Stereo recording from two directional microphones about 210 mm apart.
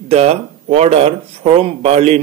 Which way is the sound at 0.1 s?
30° right (ahead or behind).